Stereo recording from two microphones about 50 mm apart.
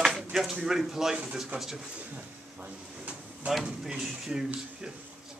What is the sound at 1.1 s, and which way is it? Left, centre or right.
Speech, centre.